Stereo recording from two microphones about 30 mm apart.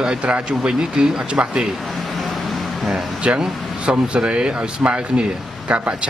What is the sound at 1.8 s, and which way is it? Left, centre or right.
Vehicle, centre.